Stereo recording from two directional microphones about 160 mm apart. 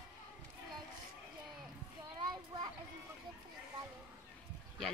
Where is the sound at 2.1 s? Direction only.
25° right (ahead or behind).